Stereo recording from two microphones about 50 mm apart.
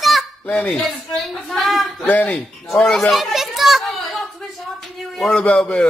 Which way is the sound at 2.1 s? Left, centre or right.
Left.